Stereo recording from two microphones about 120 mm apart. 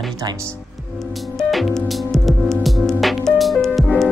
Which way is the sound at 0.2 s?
35° right (ahead or behind).